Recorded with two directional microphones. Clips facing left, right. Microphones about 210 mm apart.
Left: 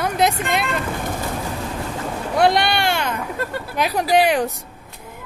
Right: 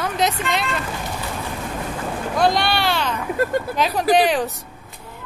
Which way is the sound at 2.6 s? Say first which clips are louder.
Left 1 dB; 15° left (ahead or behind).